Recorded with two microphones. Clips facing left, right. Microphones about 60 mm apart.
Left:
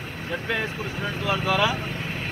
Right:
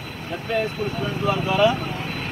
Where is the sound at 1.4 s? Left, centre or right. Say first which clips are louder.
Right 4 dB; left.